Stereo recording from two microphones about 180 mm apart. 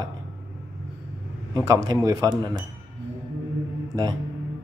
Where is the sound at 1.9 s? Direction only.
20° right (ahead or behind).